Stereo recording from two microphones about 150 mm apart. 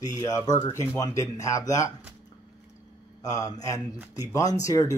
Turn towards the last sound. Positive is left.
turn(degrees=25)  # may be behind; listen again after turning